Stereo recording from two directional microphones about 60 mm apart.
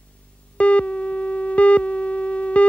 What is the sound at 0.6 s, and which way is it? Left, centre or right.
Busy signal, centre.